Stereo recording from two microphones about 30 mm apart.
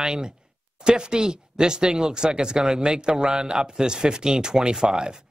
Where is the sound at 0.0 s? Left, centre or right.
Right.